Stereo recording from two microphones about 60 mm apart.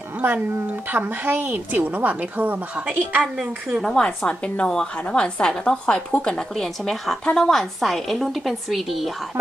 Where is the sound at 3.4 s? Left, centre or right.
Centre.